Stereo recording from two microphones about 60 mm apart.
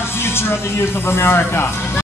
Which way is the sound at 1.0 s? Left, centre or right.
Left.